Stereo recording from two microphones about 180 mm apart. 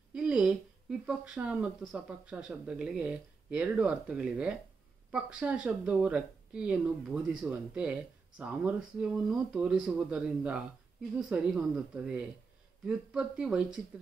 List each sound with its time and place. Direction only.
0.1 s speech: 5° right (ahead or behind)